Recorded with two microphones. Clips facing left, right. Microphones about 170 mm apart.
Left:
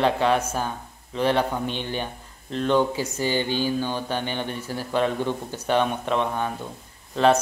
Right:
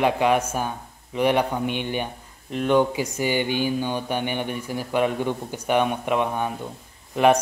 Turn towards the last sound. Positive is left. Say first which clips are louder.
# right 1 dB
turn(degrees=-15)  # may be behind; listen again after turning